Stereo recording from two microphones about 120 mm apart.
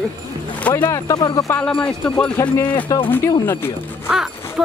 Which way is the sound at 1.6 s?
10° left (ahead or behind).